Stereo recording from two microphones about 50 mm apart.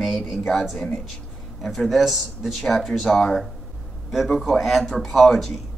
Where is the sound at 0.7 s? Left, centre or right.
Centre.